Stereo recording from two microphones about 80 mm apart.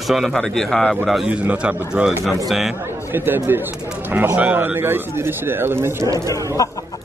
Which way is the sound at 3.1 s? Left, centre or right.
Right.